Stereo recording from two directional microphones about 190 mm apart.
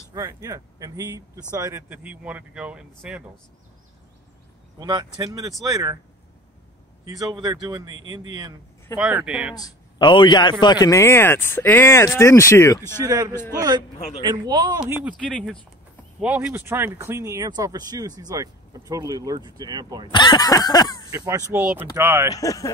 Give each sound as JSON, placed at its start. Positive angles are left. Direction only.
{"t": 0.1, "sound": "speech", "side_deg": -15}
{"t": 4.7, "sound": "speech", "side_deg": -20}
{"t": 7.1, "sound": "speech", "side_deg": -20}
{"t": 8.9, "sound": "speech", "side_deg": -5}
{"t": 9.6, "sound": "a man's voice", "side_deg": 20}
{"t": 13.0, "sound": "speech", "side_deg": -20}
{"t": 16.2, "sound": "speech", "side_deg": -10}
{"t": 20.1, "sound": "a sound", "side_deg": 25}
{"t": 21.1, "sound": "speech", "side_deg": -15}
{"t": 22.3, "sound": "a man's voice", "side_deg": 20}